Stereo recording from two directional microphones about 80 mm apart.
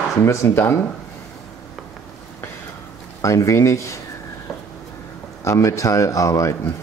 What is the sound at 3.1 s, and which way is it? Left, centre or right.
Speech, left.